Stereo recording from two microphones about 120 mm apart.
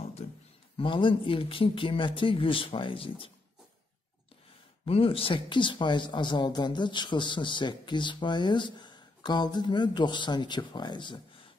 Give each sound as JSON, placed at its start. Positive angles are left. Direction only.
{"t": 0.7, "sound": "speech", "side_deg": 45}
{"t": 4.8, "sound": "speech", "side_deg": 55}